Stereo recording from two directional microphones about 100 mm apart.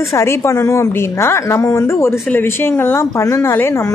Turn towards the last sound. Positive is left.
turn(degrees=25)  # may be behind; listen again after turning